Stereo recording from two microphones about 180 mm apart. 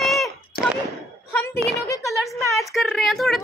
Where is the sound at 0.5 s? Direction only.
60° left (ahead or behind).